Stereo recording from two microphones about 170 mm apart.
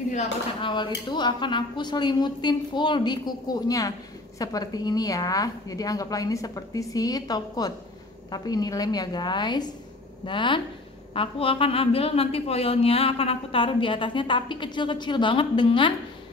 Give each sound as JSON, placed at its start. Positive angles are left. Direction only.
{"t": 0.1, "sound": "a woman's voice", "side_deg": 35}